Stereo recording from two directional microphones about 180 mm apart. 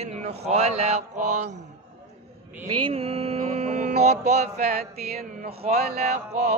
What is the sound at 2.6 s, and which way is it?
Mantra, 35° right (ahead or behind).